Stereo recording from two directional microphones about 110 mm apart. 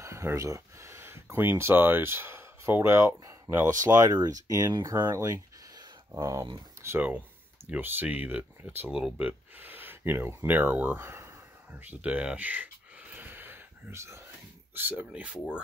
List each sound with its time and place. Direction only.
0.0 s speech: 25° right (ahead or behind)
4.9 s a sound: 25° right (ahead or behind)
6.8 s speech: 20° right (ahead or behind)
9.3 s speech: 20° right (ahead or behind)
13.1 s a sound: 15° right (ahead or behind)
14.7 s speech: 15° right (ahead or behind)